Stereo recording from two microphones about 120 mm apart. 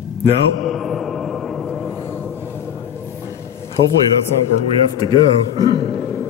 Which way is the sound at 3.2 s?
20° left (ahead or behind).